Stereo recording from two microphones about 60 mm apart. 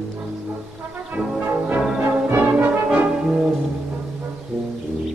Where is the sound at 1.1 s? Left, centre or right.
Right.